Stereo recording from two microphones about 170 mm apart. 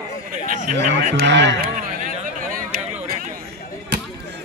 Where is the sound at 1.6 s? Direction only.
55° right (ahead or behind).